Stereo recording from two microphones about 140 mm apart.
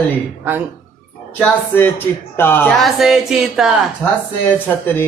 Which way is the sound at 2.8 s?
Centre (ahead or behind).